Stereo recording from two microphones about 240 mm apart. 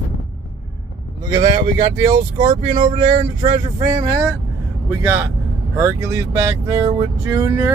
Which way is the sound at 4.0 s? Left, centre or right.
Centre.